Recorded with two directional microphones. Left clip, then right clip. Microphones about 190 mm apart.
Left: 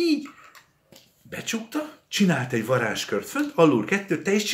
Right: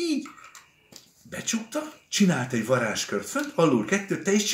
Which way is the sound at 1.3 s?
35° left (ahead or behind).